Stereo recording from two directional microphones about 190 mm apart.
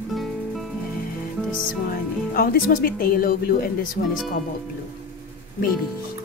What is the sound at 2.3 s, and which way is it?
Speech, 50° left (ahead or behind).